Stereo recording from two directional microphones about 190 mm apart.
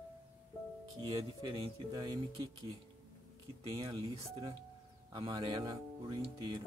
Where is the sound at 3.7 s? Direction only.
25° right (ahead or behind).